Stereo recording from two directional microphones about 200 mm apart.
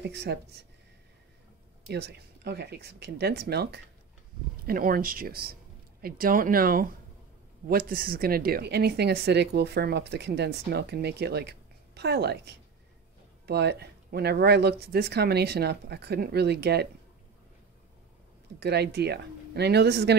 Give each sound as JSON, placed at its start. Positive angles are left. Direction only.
{"t": 0.0, "sound": "speech", "side_deg": -55}
{"t": 1.9, "sound": "speech", "side_deg": -55}
{"t": 18.6, "sound": "speech", "side_deg": -55}